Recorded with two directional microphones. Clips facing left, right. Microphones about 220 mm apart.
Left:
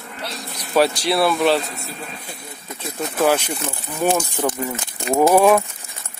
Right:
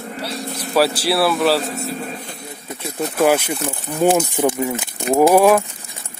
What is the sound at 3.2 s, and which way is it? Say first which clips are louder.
Speech: right 2 dB; 10° right (ahead or behind).